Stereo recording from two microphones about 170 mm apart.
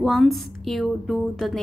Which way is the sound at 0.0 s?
Centre (ahead or behind).